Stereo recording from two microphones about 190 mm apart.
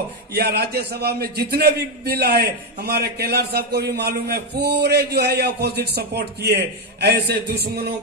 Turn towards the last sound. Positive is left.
turn(degrees=-55)  # may be behind; listen again after turning